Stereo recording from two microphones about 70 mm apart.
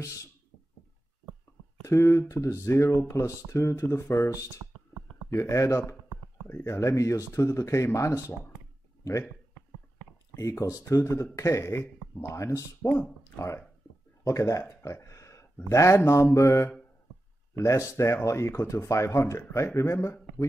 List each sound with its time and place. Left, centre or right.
1.8 s speech: left
10.3 s speech: left
14.2 s speech: left
14.8 s a sound: left
15.7 s speech: left